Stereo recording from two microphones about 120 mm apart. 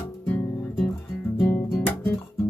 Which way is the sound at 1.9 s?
15° left (ahead or behind).